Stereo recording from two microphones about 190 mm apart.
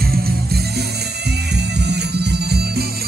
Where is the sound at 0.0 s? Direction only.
55° right (ahead or behind).